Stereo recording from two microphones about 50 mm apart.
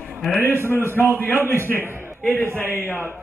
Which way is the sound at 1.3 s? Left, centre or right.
Right.